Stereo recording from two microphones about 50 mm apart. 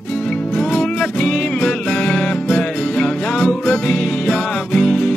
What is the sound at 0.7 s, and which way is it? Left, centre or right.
Music, centre.